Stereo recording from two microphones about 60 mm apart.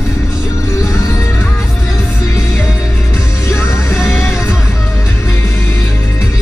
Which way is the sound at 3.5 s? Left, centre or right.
Left.